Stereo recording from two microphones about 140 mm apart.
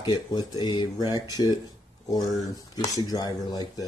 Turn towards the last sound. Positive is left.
turn(degrees=30)  # may be behind; listen again after turning